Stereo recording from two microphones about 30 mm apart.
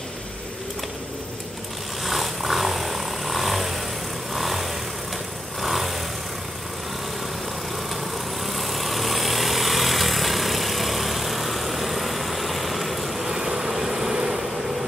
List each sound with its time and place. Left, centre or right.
2.0 s vehicle: centre
8.5 s vehicle: centre
13.3 s vehicle: centre